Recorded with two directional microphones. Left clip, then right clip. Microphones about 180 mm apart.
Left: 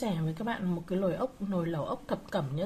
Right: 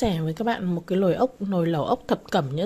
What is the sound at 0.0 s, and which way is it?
Speech, 35° right (ahead or behind).